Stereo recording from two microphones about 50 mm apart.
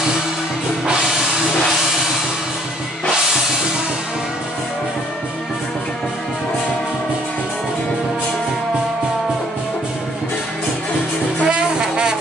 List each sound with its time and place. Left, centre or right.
11.4 s music: centre